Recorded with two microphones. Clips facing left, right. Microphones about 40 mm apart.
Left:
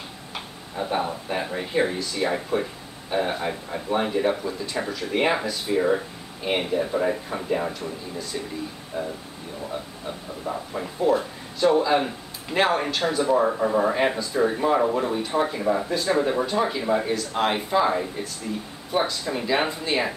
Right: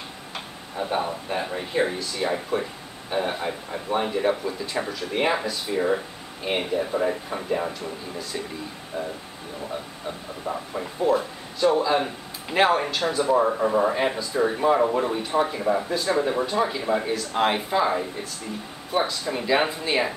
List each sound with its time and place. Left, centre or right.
0.3 s speech: centre